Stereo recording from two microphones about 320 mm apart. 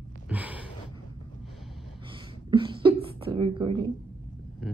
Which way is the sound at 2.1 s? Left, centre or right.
Centre.